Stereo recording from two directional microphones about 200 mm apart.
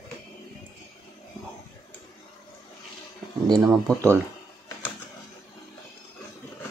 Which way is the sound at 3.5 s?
15° right (ahead or behind).